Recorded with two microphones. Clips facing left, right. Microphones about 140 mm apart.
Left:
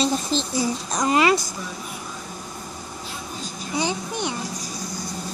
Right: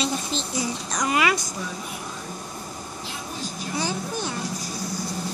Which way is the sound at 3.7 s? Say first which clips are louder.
Left 3 dB; 20° left (ahead or behind).